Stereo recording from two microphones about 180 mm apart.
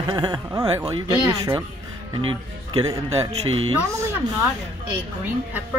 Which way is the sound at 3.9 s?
15° right (ahead or behind).